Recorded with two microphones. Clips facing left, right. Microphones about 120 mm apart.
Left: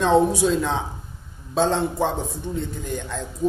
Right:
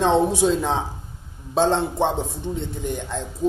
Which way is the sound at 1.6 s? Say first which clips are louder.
Right 1 dB; 25° right (ahead or behind).